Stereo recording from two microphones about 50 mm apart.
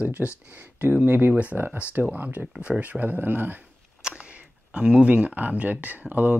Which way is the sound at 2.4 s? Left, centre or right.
Right.